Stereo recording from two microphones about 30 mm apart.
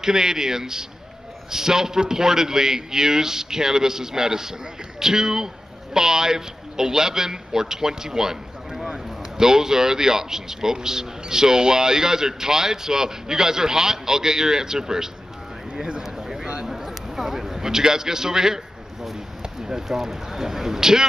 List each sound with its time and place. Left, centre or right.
0.0 s a man's voice: centre
16.0 s a sound: centre
19.6 s a man's voice: centre